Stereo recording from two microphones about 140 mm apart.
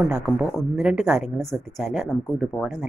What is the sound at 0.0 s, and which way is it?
A woman's voice, 5° right (ahead or behind).